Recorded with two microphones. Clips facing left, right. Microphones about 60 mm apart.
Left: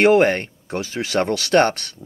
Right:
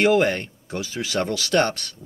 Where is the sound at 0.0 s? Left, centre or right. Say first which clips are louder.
Left 4 dB; left.